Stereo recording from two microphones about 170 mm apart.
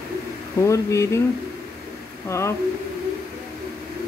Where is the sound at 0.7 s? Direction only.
15° left (ahead or behind).